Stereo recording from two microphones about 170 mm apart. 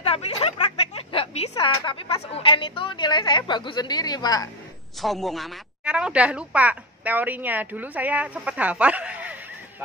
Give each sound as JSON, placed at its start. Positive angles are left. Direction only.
{"t": 0.0, "sound": "a sound", "side_deg": 35}
{"t": 1.5, "sound": "a woman's voice", "side_deg": 25}
{"t": 5.0, "sound": "speech", "side_deg": 0}